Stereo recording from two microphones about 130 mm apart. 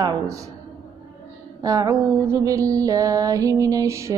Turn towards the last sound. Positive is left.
turn(degrees=-20)  # may be behind; listen again after turning